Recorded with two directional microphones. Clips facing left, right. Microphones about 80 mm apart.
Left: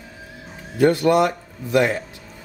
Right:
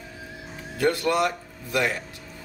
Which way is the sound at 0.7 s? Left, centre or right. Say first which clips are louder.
Left 7 dB; left.